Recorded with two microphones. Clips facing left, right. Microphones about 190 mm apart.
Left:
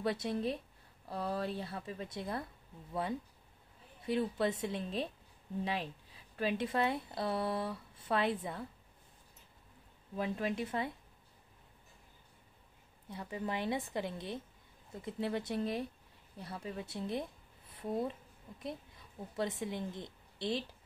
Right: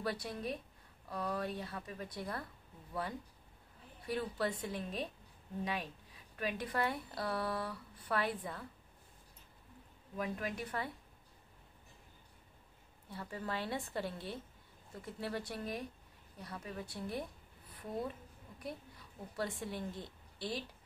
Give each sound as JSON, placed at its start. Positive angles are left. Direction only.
{"t": 0.0, "sound": "speech", "side_deg": 25}
{"t": 10.1, "sound": "speech", "side_deg": 25}
{"t": 13.1, "sound": "speech", "side_deg": 20}
{"t": 18.6, "sound": "a woman's voice", "side_deg": 25}